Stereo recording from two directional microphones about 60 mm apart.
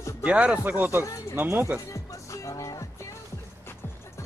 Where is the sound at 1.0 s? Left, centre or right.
Left.